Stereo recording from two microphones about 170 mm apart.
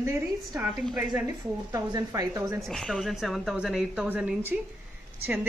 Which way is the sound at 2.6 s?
5° left (ahead or behind).